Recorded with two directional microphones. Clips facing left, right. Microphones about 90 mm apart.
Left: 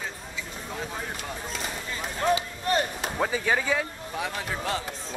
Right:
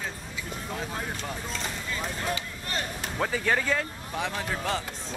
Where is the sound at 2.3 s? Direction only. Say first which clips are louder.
Left 8 dB; 20° left (ahead or behind).